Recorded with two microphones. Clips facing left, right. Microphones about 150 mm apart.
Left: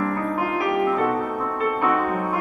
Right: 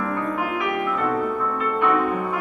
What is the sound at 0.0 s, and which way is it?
Music, 40° left (ahead or behind).